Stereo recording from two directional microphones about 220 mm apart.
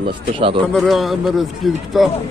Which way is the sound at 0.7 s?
Centre (ahead or behind).